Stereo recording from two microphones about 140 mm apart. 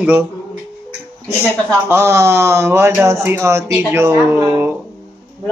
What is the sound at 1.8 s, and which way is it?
Speech, 15° right (ahead or behind).